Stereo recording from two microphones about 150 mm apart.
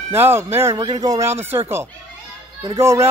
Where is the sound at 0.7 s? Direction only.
25° right (ahead or behind).